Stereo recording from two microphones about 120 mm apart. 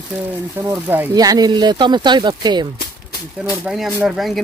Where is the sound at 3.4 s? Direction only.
5° right (ahead or behind).